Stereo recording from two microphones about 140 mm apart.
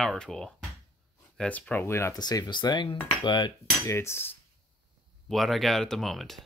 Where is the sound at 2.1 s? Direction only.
30° left (ahead or behind).